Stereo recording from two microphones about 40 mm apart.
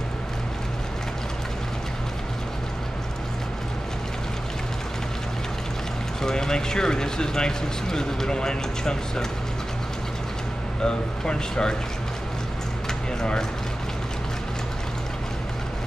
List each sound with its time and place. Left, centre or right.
6.2 s speech: centre
10.8 s speech: centre
13.2 s speech: centre